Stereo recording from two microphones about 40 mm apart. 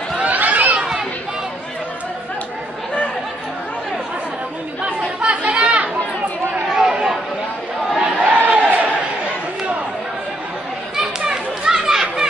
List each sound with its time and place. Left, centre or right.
0.2 s a sound: right
4.8 s chatter: right
8.0 s crowd: right
11.0 s children playing: centre